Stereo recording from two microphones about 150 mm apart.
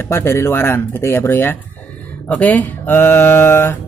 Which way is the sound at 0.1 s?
15° left (ahead or behind).